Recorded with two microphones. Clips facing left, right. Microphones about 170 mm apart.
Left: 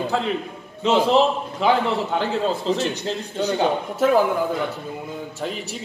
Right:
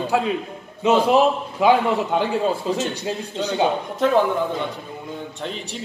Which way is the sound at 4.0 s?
5° left (ahead or behind).